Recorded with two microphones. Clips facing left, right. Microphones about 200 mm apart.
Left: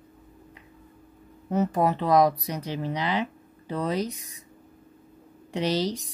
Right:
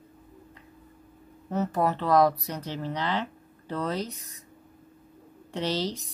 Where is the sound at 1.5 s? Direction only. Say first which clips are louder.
Left 3 dB; 15° left (ahead or behind).